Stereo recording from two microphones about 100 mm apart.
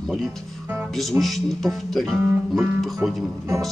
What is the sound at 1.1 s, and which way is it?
Music, 20° right (ahead or behind).